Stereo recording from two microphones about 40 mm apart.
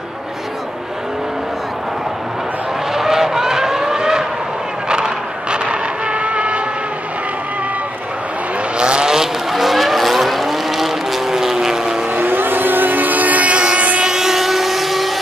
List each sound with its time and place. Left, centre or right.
2.9 s vehicle: centre; by 6.6 s right
8.7 s vehicle: right
9.5 s vehicle: centre
12.1 s vehicle: right
12.4 s vehicle: right
13.7 s train: right
14.0 s train: centre